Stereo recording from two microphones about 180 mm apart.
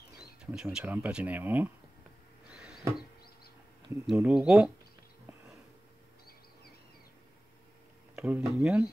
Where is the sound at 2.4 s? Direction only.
5° right (ahead or behind).